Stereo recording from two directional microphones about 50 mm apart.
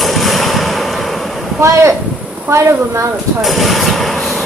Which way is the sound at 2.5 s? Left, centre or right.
Right.